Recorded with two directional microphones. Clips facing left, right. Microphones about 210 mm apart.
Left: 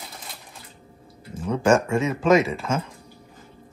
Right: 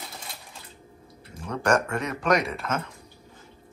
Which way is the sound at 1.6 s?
25° left (ahead or behind).